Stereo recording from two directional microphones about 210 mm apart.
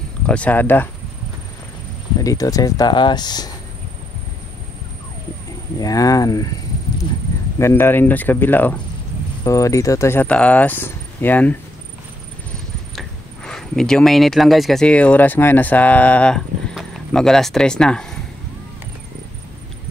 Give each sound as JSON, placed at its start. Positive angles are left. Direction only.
{"t": 0.3, "sound": "speech", "side_deg": 5}
{"t": 2.2, "sound": "speech", "side_deg": 15}
{"t": 5.8, "sound": "speech", "side_deg": 15}
{"t": 7.5, "sound": "speech", "side_deg": 10}
{"t": 12.9, "sound": "speech", "side_deg": 0}